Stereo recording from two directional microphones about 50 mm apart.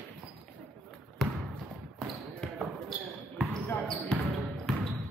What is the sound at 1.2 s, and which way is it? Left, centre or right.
Basketball bounce, centre.